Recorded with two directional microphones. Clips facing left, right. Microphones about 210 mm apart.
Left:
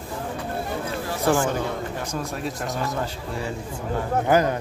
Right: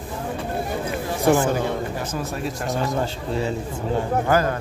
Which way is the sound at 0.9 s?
15° right (ahead or behind).